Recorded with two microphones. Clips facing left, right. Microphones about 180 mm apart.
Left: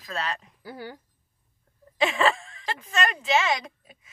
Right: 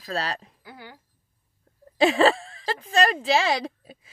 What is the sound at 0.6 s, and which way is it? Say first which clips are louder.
Speech: left 7 dB; 40° left (ahead or behind).